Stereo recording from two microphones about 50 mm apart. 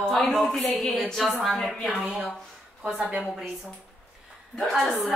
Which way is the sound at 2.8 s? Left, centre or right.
Centre.